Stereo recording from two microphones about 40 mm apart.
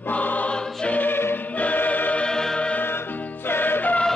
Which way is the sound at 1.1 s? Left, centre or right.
Left.